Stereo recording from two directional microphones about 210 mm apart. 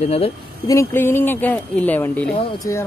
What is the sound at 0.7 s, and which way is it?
Speech, 10° left (ahead or behind).